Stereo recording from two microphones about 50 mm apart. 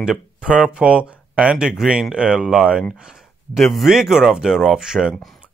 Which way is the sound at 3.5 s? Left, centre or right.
Centre.